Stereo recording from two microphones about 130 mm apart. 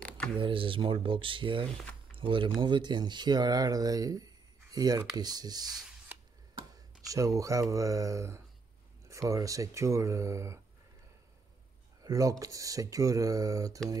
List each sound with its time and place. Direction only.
0.4 s speech: 40° right (ahead or behind); by 10.6 s 25° right (ahead or behind)
12.0 s speech: 25° right (ahead or behind)